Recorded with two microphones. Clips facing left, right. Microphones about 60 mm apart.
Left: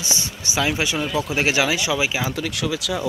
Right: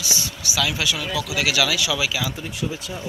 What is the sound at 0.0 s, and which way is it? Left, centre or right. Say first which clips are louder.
Speech: even; left.